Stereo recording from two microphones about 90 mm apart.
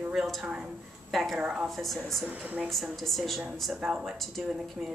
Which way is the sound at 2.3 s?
15° right (ahead or behind).